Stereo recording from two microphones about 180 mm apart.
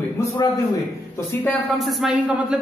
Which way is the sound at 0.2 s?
15° left (ahead or behind).